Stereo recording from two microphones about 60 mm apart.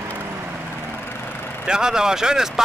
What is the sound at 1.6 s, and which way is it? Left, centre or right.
Speech, centre.